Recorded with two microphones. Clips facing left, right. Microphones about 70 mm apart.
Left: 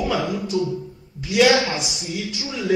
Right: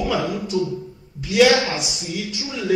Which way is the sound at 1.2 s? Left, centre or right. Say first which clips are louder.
Right 2 dB; centre.